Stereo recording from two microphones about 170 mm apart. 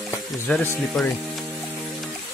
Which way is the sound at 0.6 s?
5° left (ahead or behind).